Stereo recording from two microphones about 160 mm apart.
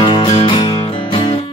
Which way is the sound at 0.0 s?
30° left (ahead or behind).